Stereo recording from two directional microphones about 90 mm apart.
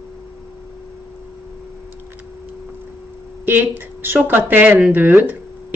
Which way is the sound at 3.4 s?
20° right (ahead or behind).